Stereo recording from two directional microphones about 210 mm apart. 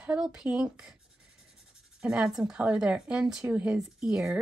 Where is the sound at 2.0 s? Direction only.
5° right (ahead or behind).